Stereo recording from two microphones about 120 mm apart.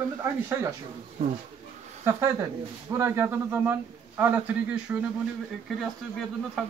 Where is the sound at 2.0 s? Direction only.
25° right (ahead or behind).